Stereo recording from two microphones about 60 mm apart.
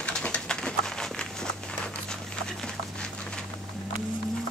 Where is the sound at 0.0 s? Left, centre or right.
Centre.